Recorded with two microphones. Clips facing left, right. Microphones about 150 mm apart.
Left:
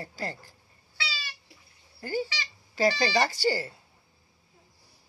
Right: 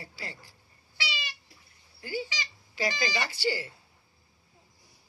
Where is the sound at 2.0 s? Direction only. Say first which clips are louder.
Left 4 dB; 45° left (ahead or behind).